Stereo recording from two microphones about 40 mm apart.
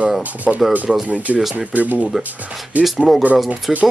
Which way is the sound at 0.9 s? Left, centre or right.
Centre.